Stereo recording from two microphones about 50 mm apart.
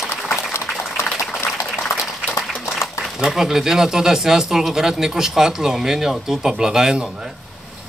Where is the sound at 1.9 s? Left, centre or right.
Left.